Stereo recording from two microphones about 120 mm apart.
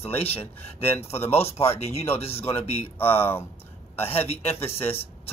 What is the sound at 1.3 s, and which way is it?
Speech, 60° left (ahead or behind).